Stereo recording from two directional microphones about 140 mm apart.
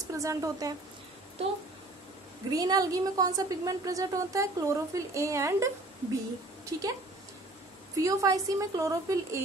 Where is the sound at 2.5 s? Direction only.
25° right (ahead or behind).